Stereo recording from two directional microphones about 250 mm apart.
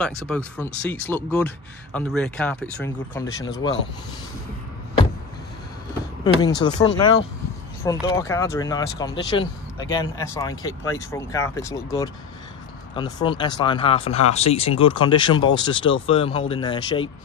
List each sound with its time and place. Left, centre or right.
0.0 s speech: centre
6.2 s speech: centre